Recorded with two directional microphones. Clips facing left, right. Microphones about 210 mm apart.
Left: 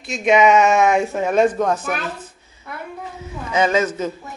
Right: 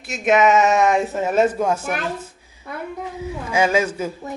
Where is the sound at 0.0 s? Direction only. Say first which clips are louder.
Left 1 dB; 5° right (ahead or behind).